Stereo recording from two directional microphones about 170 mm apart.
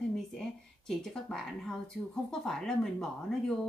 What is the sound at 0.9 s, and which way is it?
Speech, 5° left (ahead or behind).